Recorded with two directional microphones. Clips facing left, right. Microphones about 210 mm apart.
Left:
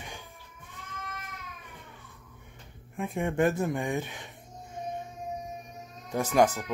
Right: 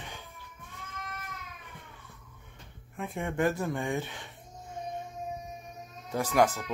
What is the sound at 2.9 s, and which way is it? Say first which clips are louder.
Speech: left 4 dB; 15° left (ahead or behind).